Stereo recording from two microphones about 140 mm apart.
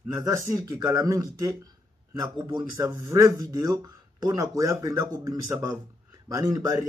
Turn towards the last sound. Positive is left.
turn(degrees=-25)  # may be behind; listen again after turning